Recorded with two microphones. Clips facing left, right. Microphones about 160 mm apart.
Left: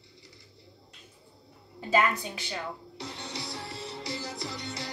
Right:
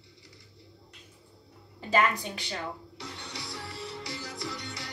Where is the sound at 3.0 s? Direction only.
20° left (ahead or behind).